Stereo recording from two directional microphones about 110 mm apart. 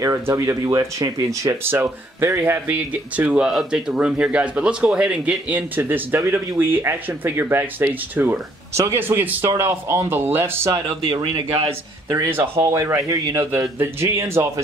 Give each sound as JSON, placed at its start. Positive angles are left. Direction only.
{"t": 0.0, "sound": "speech", "side_deg": -30}
{"t": 10.7, "sound": "speech", "side_deg": -40}
{"t": 12.3, "sound": "speech", "side_deg": -20}